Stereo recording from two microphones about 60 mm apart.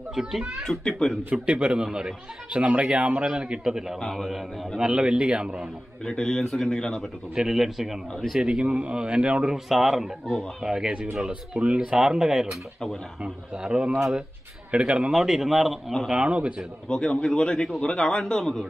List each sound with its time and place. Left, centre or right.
0.1 s speech: centre
0.7 s speech: centre
1.3 s speech: centre
4.0 s speech: centre
4.7 s speech: centre
6.0 s speech: centre
7.3 s speech: centre
15.1 s speech: centre
16.1 s speech: centre
16.9 s speech: centre